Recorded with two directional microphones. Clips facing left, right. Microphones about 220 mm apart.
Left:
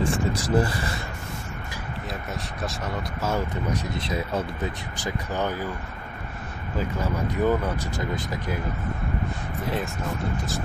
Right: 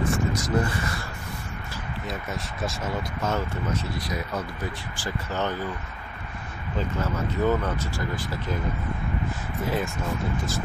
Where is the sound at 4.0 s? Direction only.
25° left (ahead or behind).